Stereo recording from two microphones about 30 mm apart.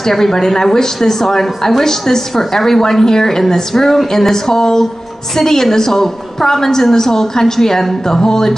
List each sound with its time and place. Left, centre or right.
0.0 s a woman's voice: centre